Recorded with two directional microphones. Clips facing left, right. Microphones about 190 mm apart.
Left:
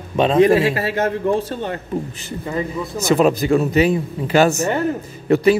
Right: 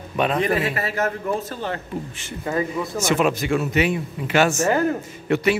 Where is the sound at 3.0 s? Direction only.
35° left (ahead or behind).